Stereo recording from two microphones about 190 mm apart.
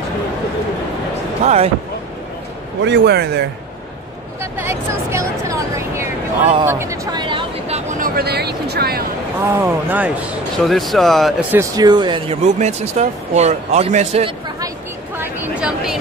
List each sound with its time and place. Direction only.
1.4 s speech: 35° right (ahead or behind)
2.8 s speech: 65° right (ahead or behind)
4.4 s a sound: 15° right (ahead or behind); by 8.1 s 35° right (ahead or behind)
8.2 s speech: 60° right (ahead or behind)
9.5 s speech: 10° right (ahead or behind)
11.5 s speech: 20° right (ahead or behind)
15.1 s a sound: 5° right (ahead or behind)